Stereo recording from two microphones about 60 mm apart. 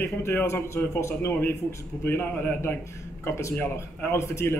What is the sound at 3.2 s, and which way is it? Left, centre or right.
Speech, left.